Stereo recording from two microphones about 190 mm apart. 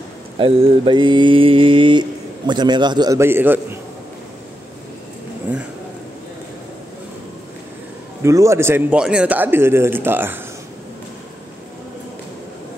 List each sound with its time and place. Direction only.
0.4 s mantra: 30° right (ahead or behind); by 3.6 s 10° right (ahead or behind)
8.2 s a man's voice: 15° right (ahead or behind)